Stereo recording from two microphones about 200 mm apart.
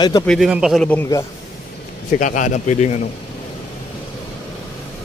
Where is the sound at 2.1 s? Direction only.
40° left (ahead or behind).